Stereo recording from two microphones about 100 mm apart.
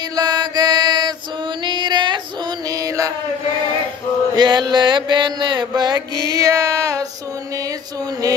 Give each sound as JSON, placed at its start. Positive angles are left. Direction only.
{"t": 0.1, "sound": "mantra", "side_deg": -40}
{"t": 1.6, "sound": "female singing", "side_deg": -50}
{"t": 2.7, "sound": "music", "side_deg": -35}
{"t": 4.4, "sound": "mantra", "side_deg": -45}